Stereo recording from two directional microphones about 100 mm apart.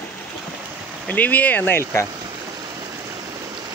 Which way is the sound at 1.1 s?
15° left (ahead or behind).